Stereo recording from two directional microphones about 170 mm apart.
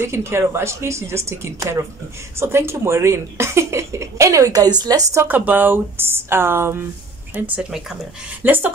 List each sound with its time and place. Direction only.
0.0 s speech: 15° right (ahead or behind)